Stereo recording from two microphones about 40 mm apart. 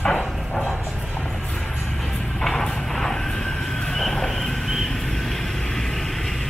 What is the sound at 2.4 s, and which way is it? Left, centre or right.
Vehicle, centre.